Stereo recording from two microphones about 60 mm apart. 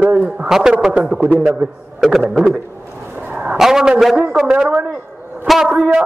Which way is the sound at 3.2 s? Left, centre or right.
Right.